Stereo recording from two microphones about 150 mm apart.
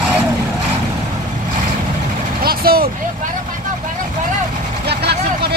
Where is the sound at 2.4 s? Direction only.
90° right.